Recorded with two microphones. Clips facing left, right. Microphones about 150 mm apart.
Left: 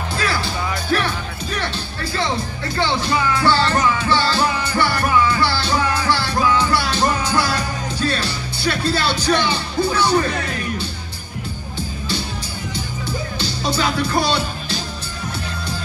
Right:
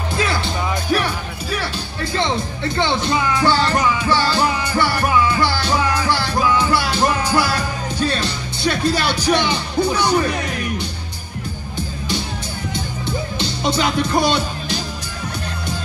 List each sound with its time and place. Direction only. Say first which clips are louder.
0.1 s music: right 2 dB; 20° right (ahead or behind)
2.7 s music: right 1 dB; 20° right (ahead or behind)
12.7 s music: right 2 dB; 20° right (ahead or behind)